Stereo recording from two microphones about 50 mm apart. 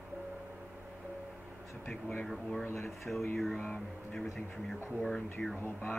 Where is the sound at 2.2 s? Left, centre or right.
Centre.